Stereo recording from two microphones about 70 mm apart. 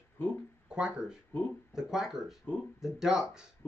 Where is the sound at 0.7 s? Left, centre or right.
Centre.